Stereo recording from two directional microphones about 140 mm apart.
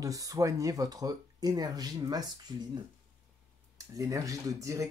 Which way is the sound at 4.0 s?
25° right (ahead or behind).